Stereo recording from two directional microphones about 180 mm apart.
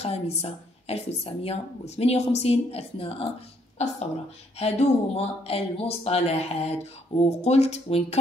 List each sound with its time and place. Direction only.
0.0 s speech: 35° left (ahead or behind)